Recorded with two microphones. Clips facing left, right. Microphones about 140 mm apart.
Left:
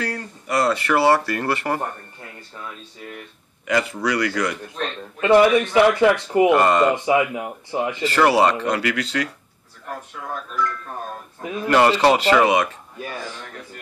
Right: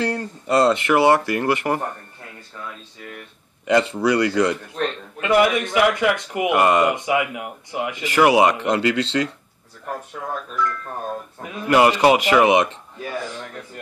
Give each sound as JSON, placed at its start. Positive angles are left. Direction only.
{"t": 0.0, "sound": "speech", "side_deg": -25}
{"t": 3.6, "sound": "speech", "side_deg": -25}
{"t": 5.2, "sound": "speech", "side_deg": 30}
{"t": 6.5, "sound": "speech", "side_deg": -15}
{"t": 7.1, "sound": "speech", "side_deg": 30}
{"t": 8.0, "sound": "speech", "side_deg": -15}
{"t": 11.6, "sound": "speech", "side_deg": -15}